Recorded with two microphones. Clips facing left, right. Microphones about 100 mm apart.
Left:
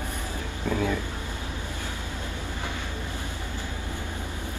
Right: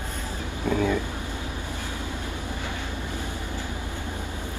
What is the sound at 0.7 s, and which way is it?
Speech, 15° right (ahead or behind).